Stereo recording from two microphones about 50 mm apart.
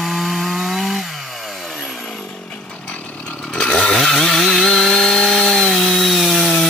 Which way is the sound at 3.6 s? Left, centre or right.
Centre.